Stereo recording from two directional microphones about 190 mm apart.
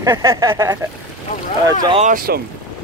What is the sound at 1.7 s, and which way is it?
Speech, 25° right (ahead or behind).